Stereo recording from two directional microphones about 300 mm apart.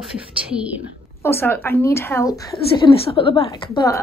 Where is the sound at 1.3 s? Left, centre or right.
Centre.